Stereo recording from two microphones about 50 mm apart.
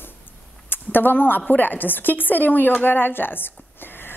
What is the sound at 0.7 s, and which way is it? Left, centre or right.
A woman's voice, left.